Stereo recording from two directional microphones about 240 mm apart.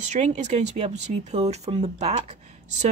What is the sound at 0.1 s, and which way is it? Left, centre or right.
Speech, right.